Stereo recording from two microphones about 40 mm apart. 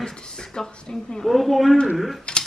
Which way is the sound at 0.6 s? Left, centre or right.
Centre.